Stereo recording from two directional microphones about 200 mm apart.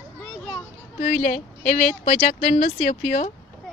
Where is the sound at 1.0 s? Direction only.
40° left (ahead or behind).